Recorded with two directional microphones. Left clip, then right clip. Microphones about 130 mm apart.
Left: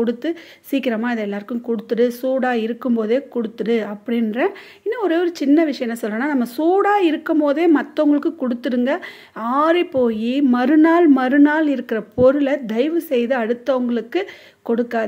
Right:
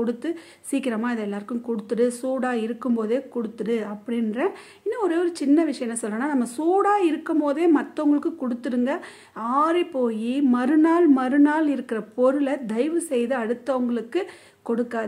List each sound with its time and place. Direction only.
0.0 s a woman's voice: 20° left (ahead or behind)